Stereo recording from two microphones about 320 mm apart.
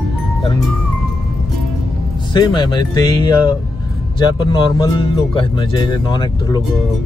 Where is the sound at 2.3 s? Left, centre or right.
Centre.